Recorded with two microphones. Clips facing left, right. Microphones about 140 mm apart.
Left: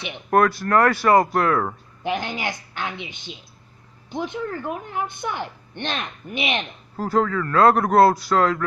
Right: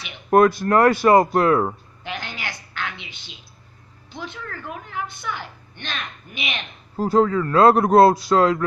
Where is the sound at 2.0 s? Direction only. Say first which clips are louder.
Left 6 dB; 15° left (ahead or behind).